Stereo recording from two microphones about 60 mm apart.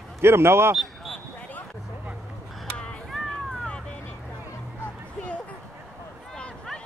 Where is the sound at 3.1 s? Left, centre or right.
Centre.